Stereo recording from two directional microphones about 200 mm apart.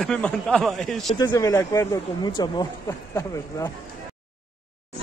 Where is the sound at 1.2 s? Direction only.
20° left (ahead or behind).